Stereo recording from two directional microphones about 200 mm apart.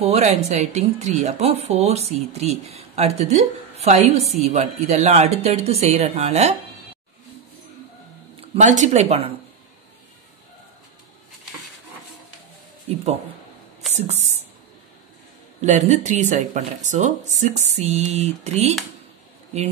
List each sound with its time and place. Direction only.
0.0 s a woman's voice: 35° right (ahead or behind)
8.4 s speech: 35° right (ahead or behind)
13.9 s a woman's voice: 35° right (ahead or behind)
15.6 s a woman's voice: 35° right (ahead or behind)